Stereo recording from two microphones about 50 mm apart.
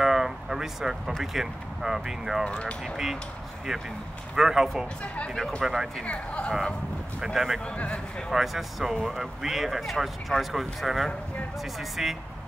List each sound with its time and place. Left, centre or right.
0.0 s a sound: centre
1.2 s speech: centre
2.4 s speech: centre
4.4 s speech: centre
5.0 s speech: left
5.6 s speech: centre
6.0 s speech: left
7.3 s speech: centre
7.6 s speech: left
8.3 s speech: centre